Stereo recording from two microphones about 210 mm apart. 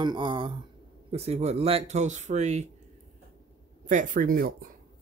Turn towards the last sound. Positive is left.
turn(degrees=-40)  # may be behind; listen again after turning